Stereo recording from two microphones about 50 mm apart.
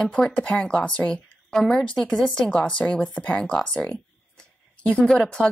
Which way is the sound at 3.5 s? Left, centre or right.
Centre.